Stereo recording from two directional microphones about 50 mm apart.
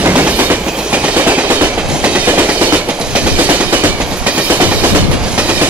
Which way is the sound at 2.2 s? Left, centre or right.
Right.